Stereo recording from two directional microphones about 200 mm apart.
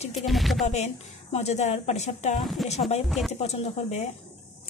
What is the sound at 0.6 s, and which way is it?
A woman's voice, 35° left (ahead or behind).